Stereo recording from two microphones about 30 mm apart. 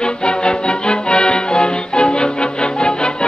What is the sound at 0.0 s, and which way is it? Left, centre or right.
Music, left.